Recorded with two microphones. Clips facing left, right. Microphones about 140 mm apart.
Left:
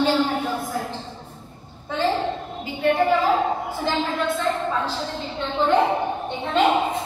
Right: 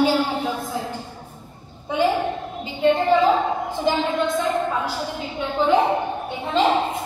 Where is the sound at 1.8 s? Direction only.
15° right (ahead or behind).